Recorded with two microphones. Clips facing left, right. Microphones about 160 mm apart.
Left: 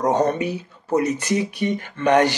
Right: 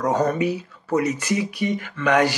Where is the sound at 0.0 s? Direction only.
30° left (ahead or behind).